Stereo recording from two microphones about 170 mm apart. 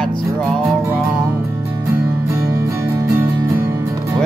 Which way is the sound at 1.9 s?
15° right (ahead or behind).